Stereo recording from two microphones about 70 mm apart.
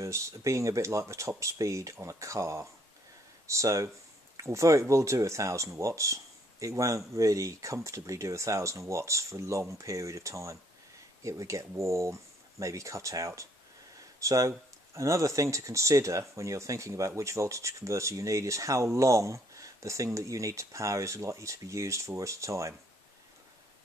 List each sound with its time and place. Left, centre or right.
0.0 s speech: right